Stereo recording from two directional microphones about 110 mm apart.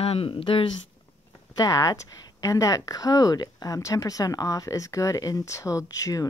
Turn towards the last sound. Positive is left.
turn(degrees=30)  # may be behind; listen again after turning